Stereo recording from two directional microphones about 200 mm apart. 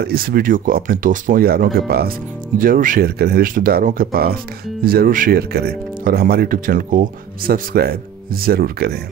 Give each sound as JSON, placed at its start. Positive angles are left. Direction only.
{"t": 0.0, "sound": "speech", "side_deg": -50}